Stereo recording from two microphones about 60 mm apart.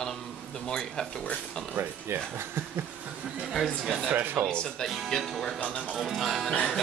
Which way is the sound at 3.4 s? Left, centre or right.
Centre.